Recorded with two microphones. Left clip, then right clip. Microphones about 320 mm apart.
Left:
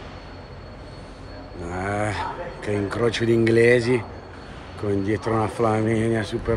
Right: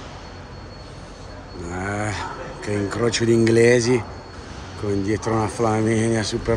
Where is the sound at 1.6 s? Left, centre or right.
Centre.